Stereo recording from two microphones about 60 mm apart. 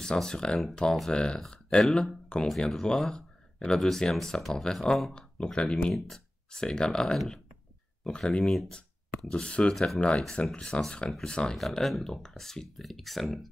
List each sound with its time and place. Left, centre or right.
0.0 s speech: centre
1.9 s speech: centre
11.5 s speech: centre